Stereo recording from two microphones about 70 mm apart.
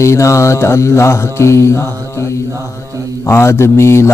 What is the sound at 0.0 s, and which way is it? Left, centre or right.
Speech, left.